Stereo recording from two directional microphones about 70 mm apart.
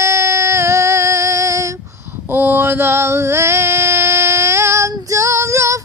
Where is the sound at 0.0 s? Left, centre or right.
Right.